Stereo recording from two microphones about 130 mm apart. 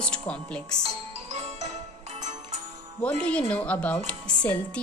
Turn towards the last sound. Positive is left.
turn(degrees=10)  # may be behind; listen again after turning